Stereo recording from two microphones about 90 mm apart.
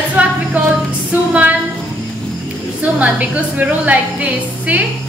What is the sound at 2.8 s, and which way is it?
A woman's voice, 15° right (ahead or behind).